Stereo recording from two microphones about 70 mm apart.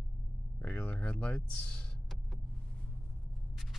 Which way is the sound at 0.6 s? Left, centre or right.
Left.